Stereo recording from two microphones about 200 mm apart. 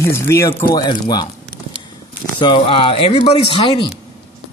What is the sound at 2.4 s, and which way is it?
A man's voice, 25° left (ahead or behind).